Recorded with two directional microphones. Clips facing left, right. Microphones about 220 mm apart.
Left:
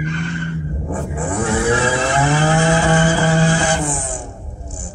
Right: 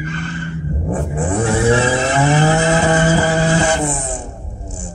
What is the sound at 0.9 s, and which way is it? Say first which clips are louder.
Vehicle: right 4 dB; 25° right (ahead or behind).